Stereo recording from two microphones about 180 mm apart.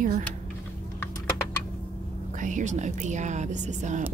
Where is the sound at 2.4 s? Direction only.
45° right (ahead or behind).